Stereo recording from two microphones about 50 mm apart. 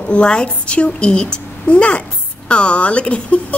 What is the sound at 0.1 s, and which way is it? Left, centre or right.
A woman's voice, centre.